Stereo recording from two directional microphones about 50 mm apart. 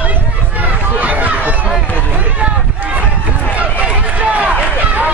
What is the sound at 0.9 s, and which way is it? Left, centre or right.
Run, right.